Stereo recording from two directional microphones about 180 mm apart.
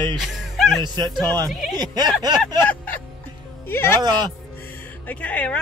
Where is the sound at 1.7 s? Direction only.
20° right (ahead or behind).